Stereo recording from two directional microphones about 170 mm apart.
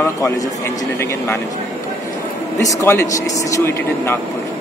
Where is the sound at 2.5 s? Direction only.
15° left (ahead or behind).